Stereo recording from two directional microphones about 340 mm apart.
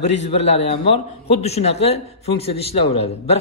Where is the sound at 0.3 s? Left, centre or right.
Centre.